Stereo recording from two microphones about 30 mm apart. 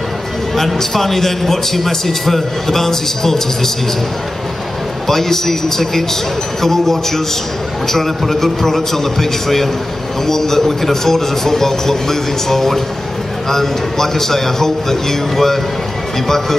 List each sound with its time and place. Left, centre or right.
0.7 s a man's voice: centre
5.0 s a man's voice: centre